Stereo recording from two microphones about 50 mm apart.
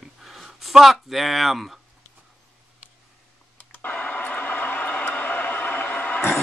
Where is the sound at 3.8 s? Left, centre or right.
Left.